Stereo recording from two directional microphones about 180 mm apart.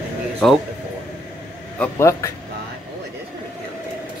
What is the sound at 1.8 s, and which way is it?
Speech, 15° left (ahead or behind).